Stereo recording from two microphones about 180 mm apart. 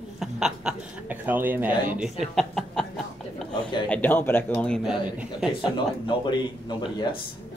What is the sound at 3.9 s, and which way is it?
Speech, 10° left (ahead or behind).